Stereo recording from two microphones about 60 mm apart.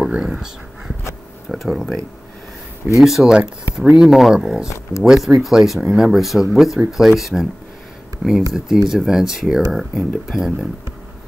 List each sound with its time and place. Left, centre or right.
0.0 s a sound: centre
1.5 s speech: centre
3.0 s speech: centre
4.6 s speech: left
5.0 s speech: centre